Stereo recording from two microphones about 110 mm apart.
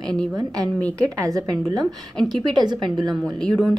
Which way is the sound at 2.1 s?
5° left (ahead or behind).